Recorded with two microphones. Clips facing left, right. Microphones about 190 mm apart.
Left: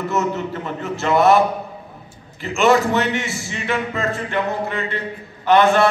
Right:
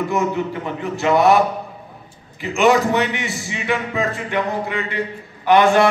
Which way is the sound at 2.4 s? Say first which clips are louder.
Even; 15° right (ahead or behind).